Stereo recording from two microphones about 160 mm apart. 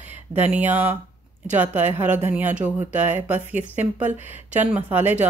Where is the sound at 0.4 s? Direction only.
10° right (ahead or behind).